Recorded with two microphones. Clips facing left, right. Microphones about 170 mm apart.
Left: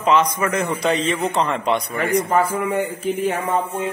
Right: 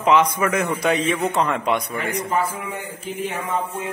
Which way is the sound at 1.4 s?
15° left (ahead or behind).